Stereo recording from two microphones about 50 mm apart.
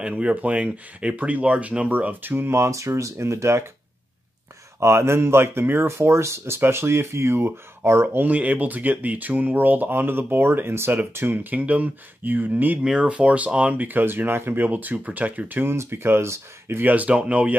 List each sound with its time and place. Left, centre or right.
0.0 s speech: right
2.3 s speech: right
4.7 s speech: right
8.2 s speech: right
11.5 s speech: right
12.7 s speech: centre; by 15.7 s right
15.7 s speech: right
16.8 s speech: right